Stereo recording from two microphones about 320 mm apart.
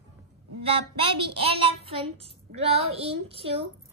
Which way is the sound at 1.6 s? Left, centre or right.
Centre.